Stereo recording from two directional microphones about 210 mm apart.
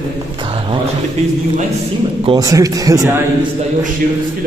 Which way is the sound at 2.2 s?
20° right (ahead or behind).